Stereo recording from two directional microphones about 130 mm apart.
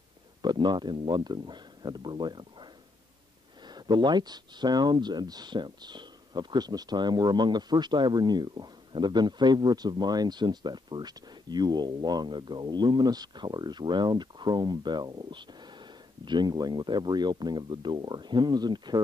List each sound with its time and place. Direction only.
0.4 s speech: 35° right (ahead or behind)